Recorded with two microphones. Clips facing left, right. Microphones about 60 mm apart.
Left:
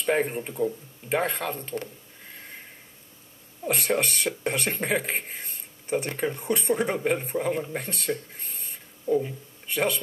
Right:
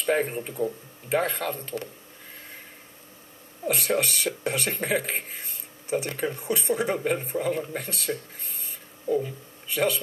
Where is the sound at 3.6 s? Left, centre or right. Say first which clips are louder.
Even; left.